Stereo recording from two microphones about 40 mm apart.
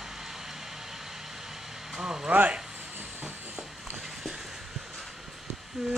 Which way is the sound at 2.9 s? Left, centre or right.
Right.